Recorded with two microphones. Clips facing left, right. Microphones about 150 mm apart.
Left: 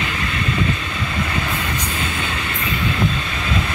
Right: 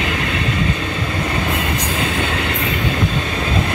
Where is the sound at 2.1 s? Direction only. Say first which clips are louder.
Right 5 dB; 60° right (ahead or behind).